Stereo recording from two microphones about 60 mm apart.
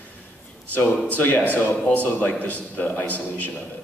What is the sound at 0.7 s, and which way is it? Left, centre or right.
Speech, left.